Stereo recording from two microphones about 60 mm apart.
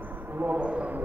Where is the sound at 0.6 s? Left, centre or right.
Centre.